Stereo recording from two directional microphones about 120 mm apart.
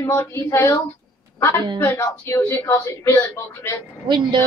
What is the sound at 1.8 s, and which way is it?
Speech, 25° left (ahead or behind).